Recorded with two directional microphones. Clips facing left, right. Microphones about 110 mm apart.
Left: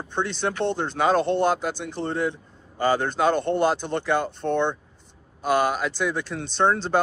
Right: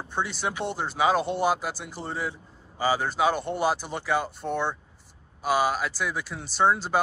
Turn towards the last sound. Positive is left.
turn(degrees=-5)  # may be behind; listen again after turning